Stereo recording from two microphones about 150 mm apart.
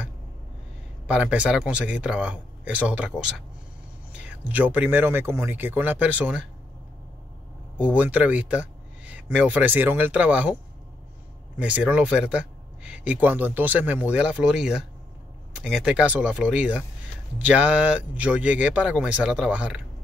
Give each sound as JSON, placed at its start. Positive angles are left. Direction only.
{"t": 1.0, "sound": "speech", "side_deg": -10}
{"t": 7.8, "sound": "speech", "side_deg": -10}